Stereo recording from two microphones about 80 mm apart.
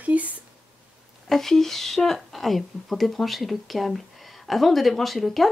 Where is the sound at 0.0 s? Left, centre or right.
Centre.